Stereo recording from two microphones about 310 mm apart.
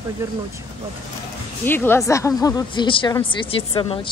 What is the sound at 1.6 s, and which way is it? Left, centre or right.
Speech, centre.